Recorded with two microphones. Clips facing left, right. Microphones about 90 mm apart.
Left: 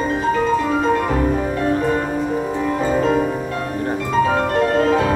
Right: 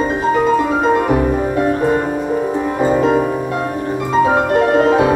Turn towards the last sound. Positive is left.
turn(degrees=-20)  # may be behind; listen again after turning